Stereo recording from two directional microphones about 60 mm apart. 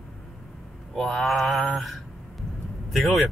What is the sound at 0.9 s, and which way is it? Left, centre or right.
Speech, centre.